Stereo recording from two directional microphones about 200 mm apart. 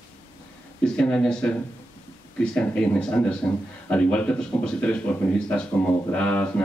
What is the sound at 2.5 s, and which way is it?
Speech, 5° left (ahead or behind).